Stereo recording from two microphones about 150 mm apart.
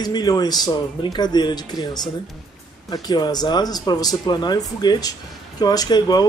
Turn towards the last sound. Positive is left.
turn(degrees=25)  # may be behind; listen again after turning